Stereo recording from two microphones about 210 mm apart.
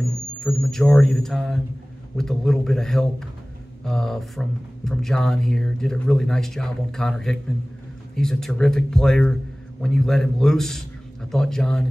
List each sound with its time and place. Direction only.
0.4 s speech: centre (ahead or behind)